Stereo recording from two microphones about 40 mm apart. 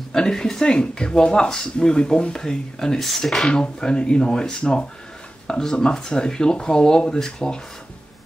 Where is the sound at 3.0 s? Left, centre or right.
Centre.